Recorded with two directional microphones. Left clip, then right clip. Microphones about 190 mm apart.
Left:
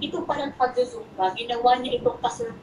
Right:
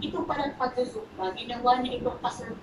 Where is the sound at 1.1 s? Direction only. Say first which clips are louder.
Left 9 dB; 45° left (ahead or behind).